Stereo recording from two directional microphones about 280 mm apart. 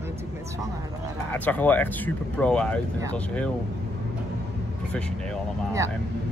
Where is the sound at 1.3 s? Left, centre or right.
Centre.